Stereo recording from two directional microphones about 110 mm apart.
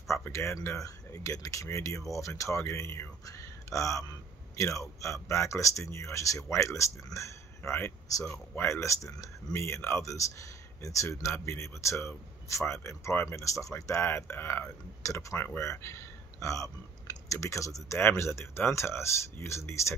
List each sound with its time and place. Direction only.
0.1 s speech: 25° left (ahead or behind)